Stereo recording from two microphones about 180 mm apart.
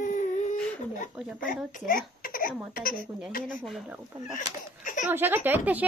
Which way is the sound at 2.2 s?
50° left (ahead or behind).